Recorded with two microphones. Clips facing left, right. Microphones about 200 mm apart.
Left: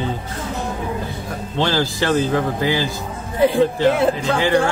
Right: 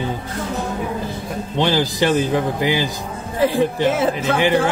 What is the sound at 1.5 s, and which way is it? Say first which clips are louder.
Speech: right 1 dB; 15° right (ahead or behind).